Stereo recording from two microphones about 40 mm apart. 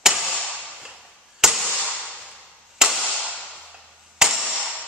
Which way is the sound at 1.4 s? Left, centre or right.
Centre.